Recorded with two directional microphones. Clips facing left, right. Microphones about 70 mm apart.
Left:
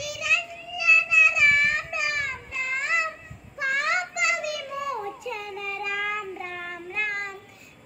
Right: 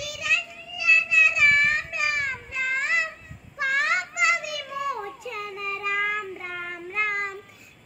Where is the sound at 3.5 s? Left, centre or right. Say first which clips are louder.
Right 1 dB; centre.